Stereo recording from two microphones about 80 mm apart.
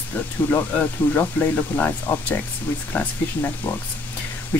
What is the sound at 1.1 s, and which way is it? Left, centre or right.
Speech, left.